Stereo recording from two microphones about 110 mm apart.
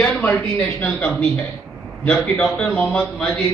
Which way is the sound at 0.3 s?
10° left (ahead or behind).